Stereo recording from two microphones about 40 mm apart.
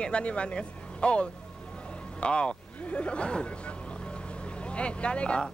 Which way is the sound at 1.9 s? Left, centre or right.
Left.